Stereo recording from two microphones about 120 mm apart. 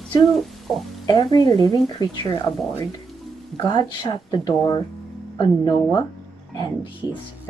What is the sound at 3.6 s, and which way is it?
A woman's voice, 35° left (ahead or behind).